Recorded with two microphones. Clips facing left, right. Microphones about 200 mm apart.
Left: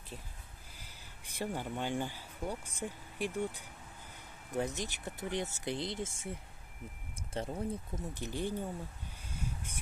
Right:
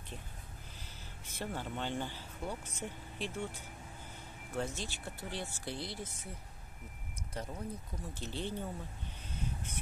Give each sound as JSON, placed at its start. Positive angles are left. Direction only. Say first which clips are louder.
{"t": 0.7, "sound": "speech", "louder": "right 3 dB", "side_deg": 10}
{"t": 4.6, "sound": "speech", "louder": "left 3 dB", "side_deg": 15}
{"t": 7.3, "sound": "speech", "louder": "left 5 dB", "side_deg": 25}
{"t": 8.1, "sound": "speech", "louder": "left 3 dB", "side_deg": 15}
{"t": 9.3, "sound": "a sound", "louder": "right 1 dB", "side_deg": 10}